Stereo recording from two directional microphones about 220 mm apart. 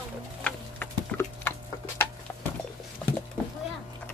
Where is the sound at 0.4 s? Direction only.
5° left (ahead or behind).